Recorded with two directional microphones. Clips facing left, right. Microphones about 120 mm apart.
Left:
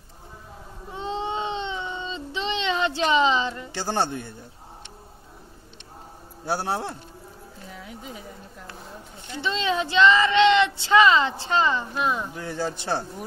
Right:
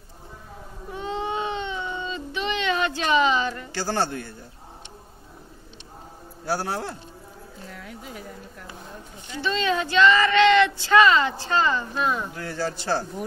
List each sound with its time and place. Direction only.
0.9 s baby cry: 25° left (ahead or behind)
6.4 s speech: 25° left (ahead or behind)
9.3 s speech: 20° left (ahead or behind)